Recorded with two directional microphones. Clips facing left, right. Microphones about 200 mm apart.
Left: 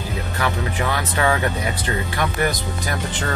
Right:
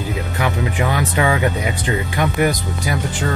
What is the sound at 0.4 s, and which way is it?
Speech, 15° right (ahead or behind).